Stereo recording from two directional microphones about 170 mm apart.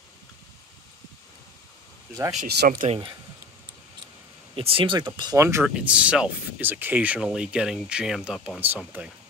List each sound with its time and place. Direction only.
2.4 s speech: 70° right (ahead or behind)
4.6 s speech: 30° right (ahead or behind); by 9.1 s 10° right (ahead or behind)